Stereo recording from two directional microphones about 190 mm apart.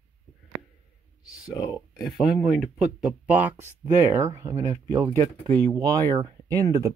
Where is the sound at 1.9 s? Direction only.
Centre (ahead or behind).